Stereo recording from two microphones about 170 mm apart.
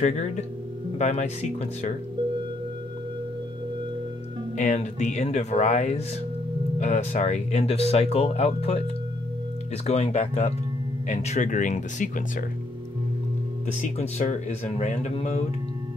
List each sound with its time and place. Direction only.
0.0 s speech: 45° left (ahead or behind)
4.6 s speech: 45° left (ahead or behind)
9.8 s speech: 40° left (ahead or behind)
13.7 s speech: 40° left (ahead or behind)